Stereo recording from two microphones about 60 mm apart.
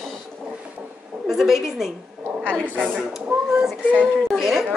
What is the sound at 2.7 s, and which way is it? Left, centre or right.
Speech, right.